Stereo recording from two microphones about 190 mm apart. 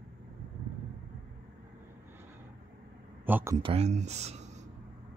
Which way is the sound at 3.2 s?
10° right (ahead or behind).